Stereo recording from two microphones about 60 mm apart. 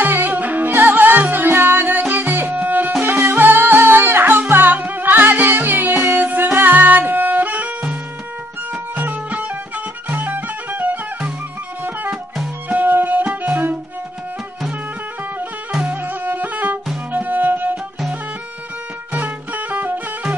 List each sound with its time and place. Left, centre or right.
0.0 s music: right
8.9 s music: right
12.6 s music: right
15.9 s music: right
19.1 s music: right